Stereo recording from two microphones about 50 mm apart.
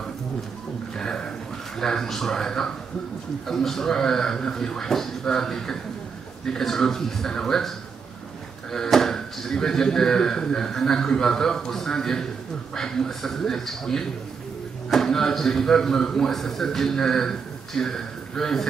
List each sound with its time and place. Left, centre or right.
0.9 s a sound: centre
1.8 s a man's voice: centre
8.7 s a man's voice: centre